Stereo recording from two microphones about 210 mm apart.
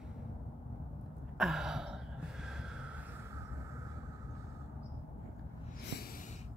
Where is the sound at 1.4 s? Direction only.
Centre (ahead or behind).